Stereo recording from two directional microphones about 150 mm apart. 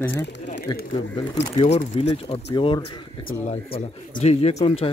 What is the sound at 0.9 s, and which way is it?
Speech, 35° left (ahead or behind).